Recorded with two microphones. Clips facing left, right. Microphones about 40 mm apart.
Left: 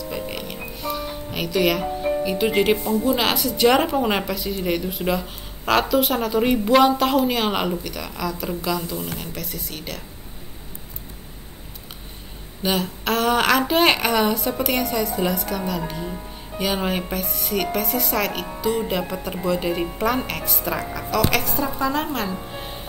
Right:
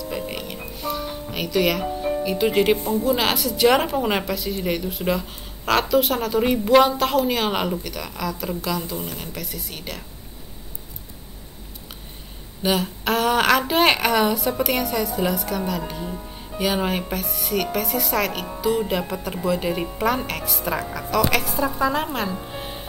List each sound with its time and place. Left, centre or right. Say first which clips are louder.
0.0 s music: even; centre
3.0 s a woman's voice: even; centre
12.6 s a woman's voice: right 1 dB; centre